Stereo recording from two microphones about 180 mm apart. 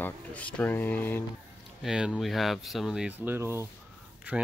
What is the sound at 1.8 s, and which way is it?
Speech, 5° right (ahead or behind).